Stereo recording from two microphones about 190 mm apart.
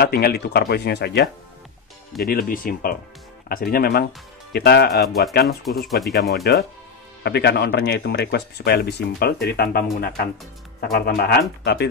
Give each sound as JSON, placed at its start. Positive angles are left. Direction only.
{"t": 0.0, "sound": "speech", "side_deg": 55}
{"t": 6.1, "sound": "speech", "side_deg": 0}
{"t": 7.2, "sound": "speech", "side_deg": 60}